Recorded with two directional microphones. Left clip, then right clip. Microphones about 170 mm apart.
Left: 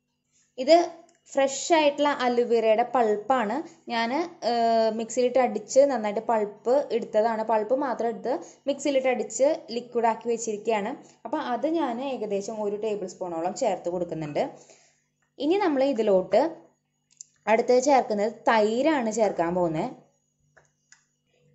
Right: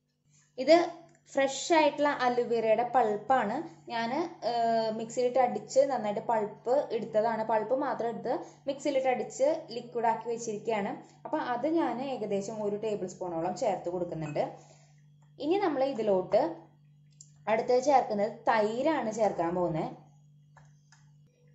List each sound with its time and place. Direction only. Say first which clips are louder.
0.6 s a woman's voice: left 4 dB; 10° left (ahead or behind); by 19.9 s 40° left (ahead or behind)